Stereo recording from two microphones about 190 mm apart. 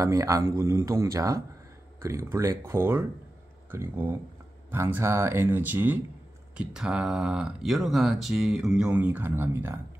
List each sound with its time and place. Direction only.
0.0 s speech: 15° right (ahead or behind)